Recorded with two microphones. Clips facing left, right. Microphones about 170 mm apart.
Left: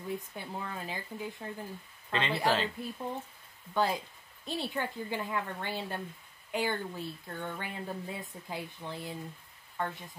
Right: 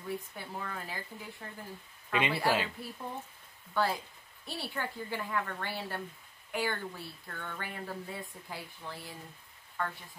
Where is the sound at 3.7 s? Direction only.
20° left (ahead or behind).